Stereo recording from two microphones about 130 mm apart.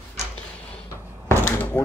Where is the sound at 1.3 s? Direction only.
20° left (ahead or behind).